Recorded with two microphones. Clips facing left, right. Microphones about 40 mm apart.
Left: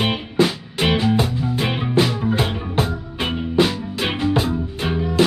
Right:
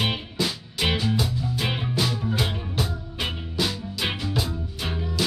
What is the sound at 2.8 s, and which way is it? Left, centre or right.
Music, left.